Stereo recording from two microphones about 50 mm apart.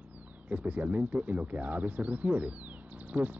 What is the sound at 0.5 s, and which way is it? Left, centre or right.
Speech, right.